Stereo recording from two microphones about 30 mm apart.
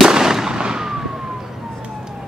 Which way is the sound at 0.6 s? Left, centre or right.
Right.